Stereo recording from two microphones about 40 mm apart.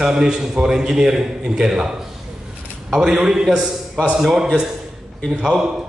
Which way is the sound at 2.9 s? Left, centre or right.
Centre.